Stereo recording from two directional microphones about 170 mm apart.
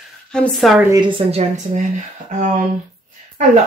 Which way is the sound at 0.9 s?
30° right (ahead or behind).